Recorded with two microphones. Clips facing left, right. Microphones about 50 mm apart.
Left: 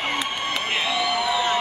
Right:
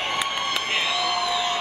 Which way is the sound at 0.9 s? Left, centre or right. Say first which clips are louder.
Left 2 dB; centre.